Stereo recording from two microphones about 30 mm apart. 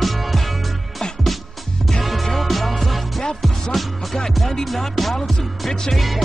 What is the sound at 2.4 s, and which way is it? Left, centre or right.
Music, centre.